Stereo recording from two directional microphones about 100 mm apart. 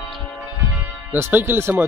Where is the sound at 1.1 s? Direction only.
20° right (ahead or behind).